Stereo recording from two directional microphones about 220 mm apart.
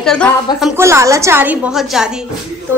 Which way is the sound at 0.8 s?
15° right (ahead or behind).